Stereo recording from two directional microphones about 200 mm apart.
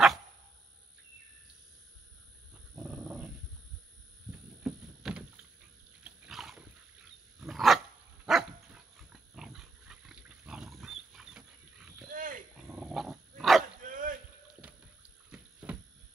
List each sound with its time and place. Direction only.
2.7 s dog: centre (ahead or behind)
4.6 s rowboat: 5° right (ahead or behind)
6.0 s roaring cats: 5° right (ahead or behind)
7.3 s dog: centre (ahead or behind)
12.1 s pig: 40° right (ahead or behind)
12.5 s dog: 5° right (ahead or behind)
13.7 s dog: 45° right (ahead or behind)
15.3 s a sound: 5° right (ahead or behind)